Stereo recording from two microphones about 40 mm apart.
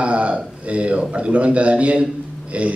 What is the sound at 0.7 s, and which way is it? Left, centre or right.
A man's voice, right.